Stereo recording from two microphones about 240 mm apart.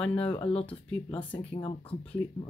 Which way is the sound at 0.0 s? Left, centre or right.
Centre.